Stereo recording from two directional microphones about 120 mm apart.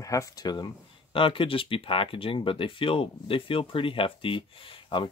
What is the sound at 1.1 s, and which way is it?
Speech, 50° left (ahead or behind).